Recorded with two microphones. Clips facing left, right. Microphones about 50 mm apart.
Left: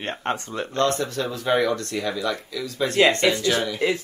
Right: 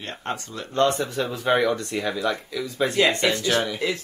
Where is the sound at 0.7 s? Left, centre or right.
Centre.